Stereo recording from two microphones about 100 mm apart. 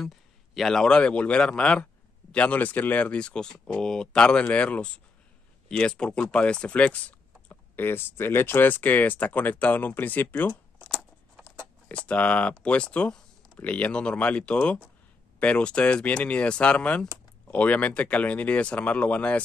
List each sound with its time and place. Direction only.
0.6 s speech: 5° left (ahead or behind)